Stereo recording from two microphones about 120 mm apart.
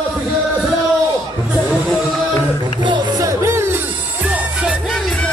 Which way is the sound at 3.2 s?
25° right (ahead or behind).